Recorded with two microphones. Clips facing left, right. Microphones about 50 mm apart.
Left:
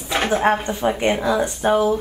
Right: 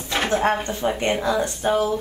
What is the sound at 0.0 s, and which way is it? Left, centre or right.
Speech, centre.